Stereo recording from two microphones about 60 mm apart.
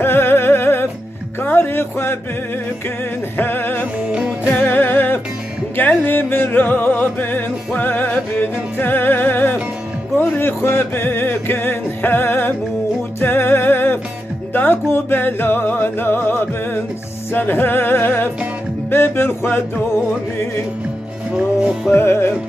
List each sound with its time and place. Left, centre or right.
0.0 s music: left
3.3 s music: left
10.6 s music: left
14.5 s speech: left
21.9 s music: left